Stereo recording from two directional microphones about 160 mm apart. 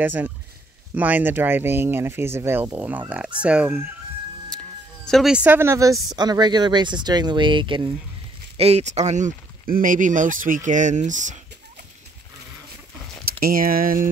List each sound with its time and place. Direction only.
0.0 s speech: 10° right (ahead or behind)
5.0 s speech: centre (ahead or behind); by 7.9 s 30° right (ahead or behind)
8.5 s speech: 40° right (ahead or behind)
13.4 s speech: 65° right (ahead or behind)